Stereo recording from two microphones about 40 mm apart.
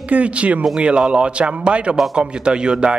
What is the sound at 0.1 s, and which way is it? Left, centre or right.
Speech, right.